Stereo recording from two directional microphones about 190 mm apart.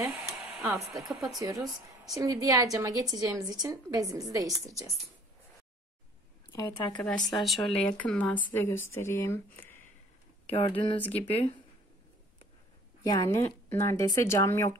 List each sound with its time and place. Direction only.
0.5 s a woman's voice: 10° right (ahead or behind)
6.5 s speech: 20° left (ahead or behind)
7.0 s speech: 5° left (ahead or behind)
10.4 s speech: 30° left (ahead or behind)
13.0 s speech: 20° left (ahead or behind)